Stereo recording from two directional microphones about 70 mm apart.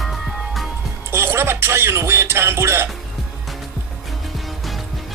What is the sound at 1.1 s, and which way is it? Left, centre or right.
Music, right.